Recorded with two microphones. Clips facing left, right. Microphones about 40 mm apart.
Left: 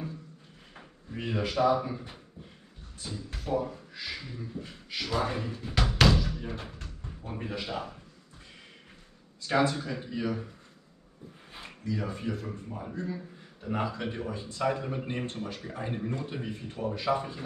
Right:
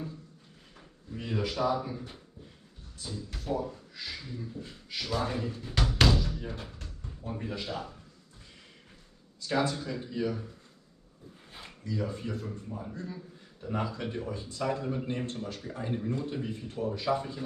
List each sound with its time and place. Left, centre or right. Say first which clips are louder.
0.7 s a sound: left 3 dB; left
1.4 s a man's voice: left 4 dB; left; by 6.7 s centre
6.7 s speech: left 2 dB; left
9.5 s a man's voice: left 3 dB; left
11.9 s a man's voice: left 1 dB; left